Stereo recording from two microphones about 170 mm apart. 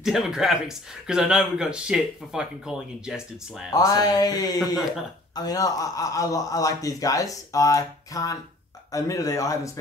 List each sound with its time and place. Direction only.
0.0 s speech: 5° right (ahead or behind)
3.7 s speech: 20° left (ahead or behind)